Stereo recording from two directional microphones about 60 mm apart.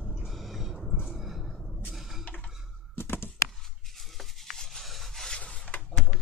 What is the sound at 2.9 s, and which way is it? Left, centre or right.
Computer keyboard, left.